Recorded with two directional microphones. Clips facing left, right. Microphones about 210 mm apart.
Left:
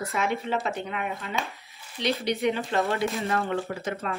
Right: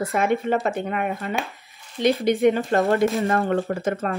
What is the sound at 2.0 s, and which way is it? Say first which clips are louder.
Speech: right 8 dB; 50° right (ahead or behind).